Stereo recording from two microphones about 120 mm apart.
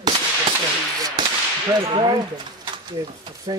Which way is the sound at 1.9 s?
45° right (ahead or behind).